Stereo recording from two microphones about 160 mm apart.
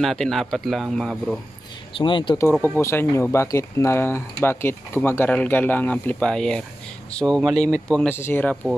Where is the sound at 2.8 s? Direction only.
15° left (ahead or behind).